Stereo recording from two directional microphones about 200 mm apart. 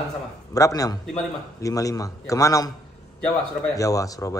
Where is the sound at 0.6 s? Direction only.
15° left (ahead or behind).